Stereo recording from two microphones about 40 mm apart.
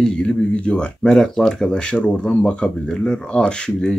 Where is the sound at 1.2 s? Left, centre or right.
Centre.